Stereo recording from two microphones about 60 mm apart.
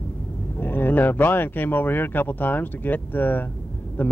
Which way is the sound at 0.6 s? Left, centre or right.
Left.